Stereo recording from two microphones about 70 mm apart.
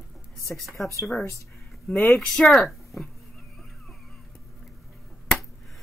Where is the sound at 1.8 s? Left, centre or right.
Left.